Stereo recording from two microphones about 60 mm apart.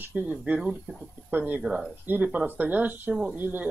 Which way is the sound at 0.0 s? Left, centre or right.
Right.